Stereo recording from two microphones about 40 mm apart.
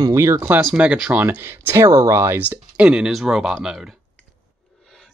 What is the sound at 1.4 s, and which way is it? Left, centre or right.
Speech, right.